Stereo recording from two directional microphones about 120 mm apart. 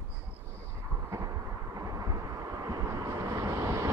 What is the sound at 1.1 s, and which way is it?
Vehicle, 30° right (ahead or behind).